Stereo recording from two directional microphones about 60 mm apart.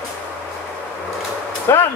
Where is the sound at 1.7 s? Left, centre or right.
Left.